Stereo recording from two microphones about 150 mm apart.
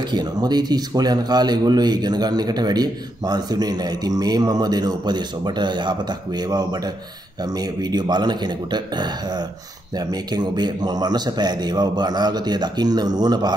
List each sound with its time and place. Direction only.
0.1 s speech: 25° right (ahead or behind)